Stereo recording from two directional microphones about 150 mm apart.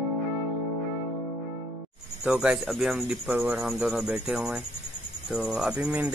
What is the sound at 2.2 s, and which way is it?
Speech, 10° right (ahead or behind).